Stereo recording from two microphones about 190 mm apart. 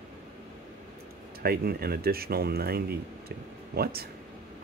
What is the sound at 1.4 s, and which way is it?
Speech, 55° right (ahead or behind).